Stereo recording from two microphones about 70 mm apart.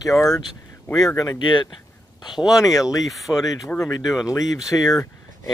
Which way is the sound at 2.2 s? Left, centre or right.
Left.